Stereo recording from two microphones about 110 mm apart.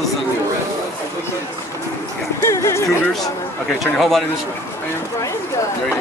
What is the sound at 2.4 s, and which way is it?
Speech, 25° left (ahead or behind).